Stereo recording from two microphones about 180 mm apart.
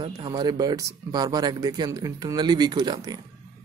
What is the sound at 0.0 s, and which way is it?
A man's voice, 25° right (ahead or behind).